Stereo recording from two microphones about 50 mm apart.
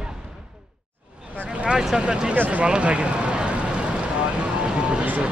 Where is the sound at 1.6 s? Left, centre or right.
Centre.